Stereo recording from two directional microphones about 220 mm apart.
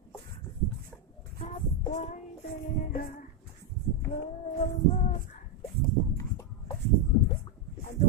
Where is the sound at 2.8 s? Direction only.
40° left (ahead or behind).